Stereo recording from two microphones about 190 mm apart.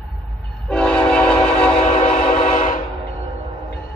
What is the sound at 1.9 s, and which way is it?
Train, 40° left (ahead or behind).